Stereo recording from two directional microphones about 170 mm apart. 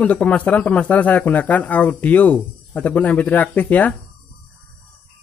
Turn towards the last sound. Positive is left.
turn(degrees=10)  # may be behind; listen again after turning